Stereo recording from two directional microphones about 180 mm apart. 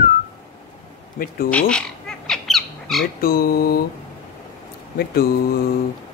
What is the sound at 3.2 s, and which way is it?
Speech, 55° left (ahead or behind).